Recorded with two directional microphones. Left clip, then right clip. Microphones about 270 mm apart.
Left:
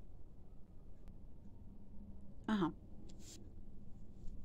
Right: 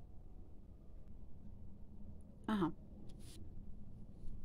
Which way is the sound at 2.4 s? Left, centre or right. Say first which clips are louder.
Even; centre.